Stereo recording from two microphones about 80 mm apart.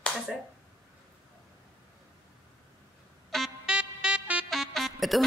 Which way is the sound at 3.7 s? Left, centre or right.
Centre.